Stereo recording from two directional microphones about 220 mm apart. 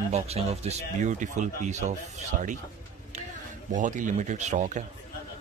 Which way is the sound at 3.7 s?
35° right (ahead or behind).